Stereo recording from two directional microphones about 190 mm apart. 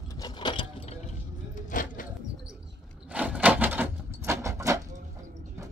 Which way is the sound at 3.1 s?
5° right (ahead or behind).